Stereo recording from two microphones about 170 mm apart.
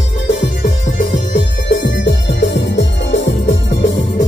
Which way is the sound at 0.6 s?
50° left (ahead or behind).